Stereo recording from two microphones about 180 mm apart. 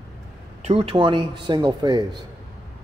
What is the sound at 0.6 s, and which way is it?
A man's voice, 35° right (ahead or behind).